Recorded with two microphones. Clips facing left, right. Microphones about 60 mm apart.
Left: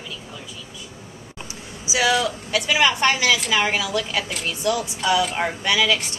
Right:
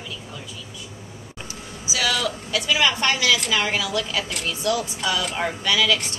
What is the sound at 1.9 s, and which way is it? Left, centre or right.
Speech, centre.